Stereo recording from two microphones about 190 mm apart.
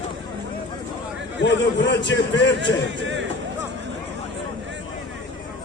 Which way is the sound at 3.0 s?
75° right (ahead or behind).